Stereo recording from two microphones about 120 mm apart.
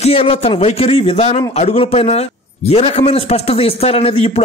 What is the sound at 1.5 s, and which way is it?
A man's voice, 65° left (ahead or behind).